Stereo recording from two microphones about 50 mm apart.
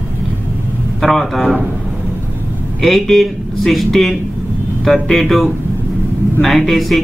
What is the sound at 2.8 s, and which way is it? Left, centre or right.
Speech, centre.